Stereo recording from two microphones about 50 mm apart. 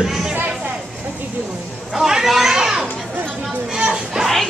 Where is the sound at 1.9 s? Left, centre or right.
Centre.